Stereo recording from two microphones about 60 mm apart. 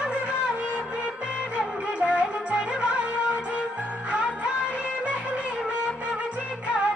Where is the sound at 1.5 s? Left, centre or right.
Right.